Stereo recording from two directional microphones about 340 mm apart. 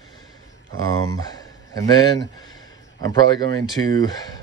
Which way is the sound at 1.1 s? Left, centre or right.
Centre.